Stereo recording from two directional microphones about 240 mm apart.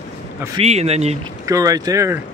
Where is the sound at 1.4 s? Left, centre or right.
Centre.